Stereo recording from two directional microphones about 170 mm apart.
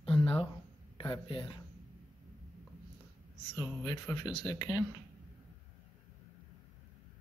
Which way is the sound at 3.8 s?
25° left (ahead or behind).